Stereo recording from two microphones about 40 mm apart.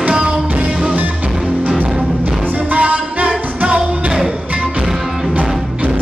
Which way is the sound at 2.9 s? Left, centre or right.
Right.